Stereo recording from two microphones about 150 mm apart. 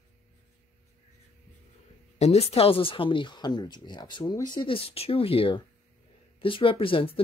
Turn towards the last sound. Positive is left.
turn(degrees=35)  # may be behind; listen again after turning